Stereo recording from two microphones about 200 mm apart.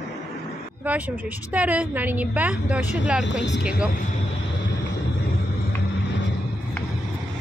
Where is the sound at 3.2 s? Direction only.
60° left (ahead or behind).